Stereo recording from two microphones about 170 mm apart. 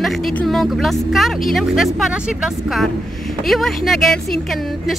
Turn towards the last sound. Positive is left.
turn(degrees=0)  # may be behind; listen again after turning